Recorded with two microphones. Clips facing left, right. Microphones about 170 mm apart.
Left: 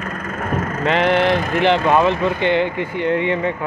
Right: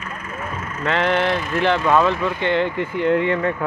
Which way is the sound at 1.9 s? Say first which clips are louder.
Left 2 dB; 20° left (ahead or behind).